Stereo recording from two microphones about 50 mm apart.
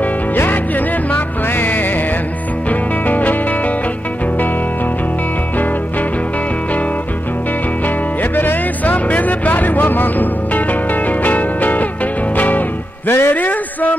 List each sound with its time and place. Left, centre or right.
0.4 s music: left
7.8 s music: left